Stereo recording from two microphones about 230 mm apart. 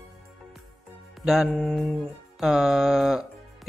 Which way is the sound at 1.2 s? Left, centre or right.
Centre.